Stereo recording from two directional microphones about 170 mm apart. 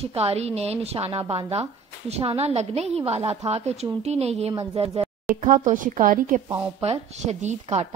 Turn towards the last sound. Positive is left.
turn(degrees=-40)  # may be behind; listen again after turning